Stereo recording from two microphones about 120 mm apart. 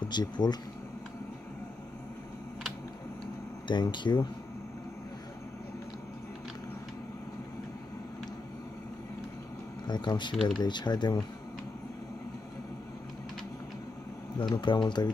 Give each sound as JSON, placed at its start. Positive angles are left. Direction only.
{"t": 0.1, "sound": "speech", "side_deg": 35}
{"t": 3.6, "sound": "speech", "side_deg": 40}
{"t": 9.8, "sound": "speech", "side_deg": 40}
{"t": 10.3, "sound": "speech", "side_deg": 5}
{"t": 10.6, "sound": "speech", "side_deg": 35}
{"t": 14.6, "sound": "speech", "side_deg": 40}